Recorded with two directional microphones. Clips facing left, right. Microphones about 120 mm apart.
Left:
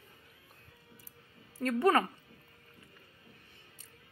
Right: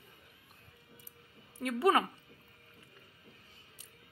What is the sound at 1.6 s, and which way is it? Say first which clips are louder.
Speech: left 1 dB; 10° right (ahead or behind).